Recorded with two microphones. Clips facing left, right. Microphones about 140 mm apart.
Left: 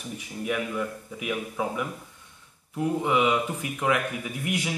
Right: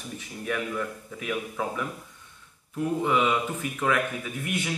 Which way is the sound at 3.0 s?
15° left (ahead or behind).